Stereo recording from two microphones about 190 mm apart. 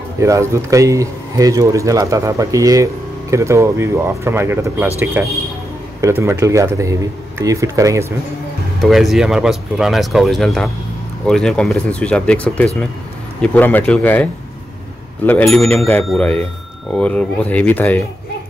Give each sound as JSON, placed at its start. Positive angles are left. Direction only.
{"t": 0.2, "sound": "speech", "side_deg": -15}
{"t": 8.8, "sound": "speech", "side_deg": 0}